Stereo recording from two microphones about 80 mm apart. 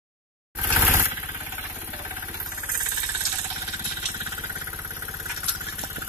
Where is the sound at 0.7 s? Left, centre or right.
Right.